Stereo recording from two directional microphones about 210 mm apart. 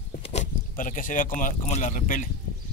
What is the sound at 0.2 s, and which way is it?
Speech, 30° left (ahead or behind).